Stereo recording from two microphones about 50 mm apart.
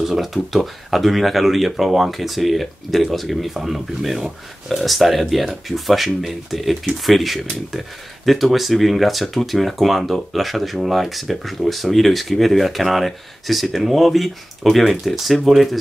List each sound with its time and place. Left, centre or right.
0.0 s speech: centre